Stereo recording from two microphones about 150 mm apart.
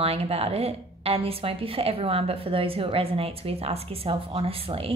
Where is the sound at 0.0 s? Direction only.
40° right (ahead or behind).